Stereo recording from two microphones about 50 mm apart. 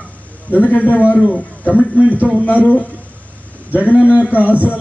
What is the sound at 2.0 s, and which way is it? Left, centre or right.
Speech, right.